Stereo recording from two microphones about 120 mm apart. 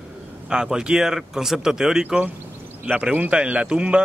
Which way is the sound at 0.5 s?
5° right (ahead or behind).